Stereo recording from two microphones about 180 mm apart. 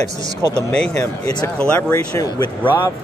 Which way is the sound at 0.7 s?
10° left (ahead or behind).